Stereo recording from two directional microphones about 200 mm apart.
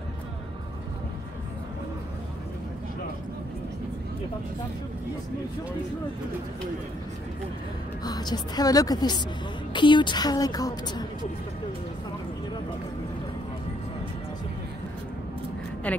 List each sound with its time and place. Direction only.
8.0 s a woman's voice: 20° left (ahead or behind)
15.9 s speech: 5° left (ahead or behind)